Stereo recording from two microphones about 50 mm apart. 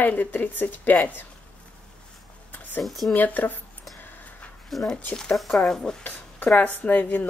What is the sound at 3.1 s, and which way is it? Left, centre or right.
Speech, left.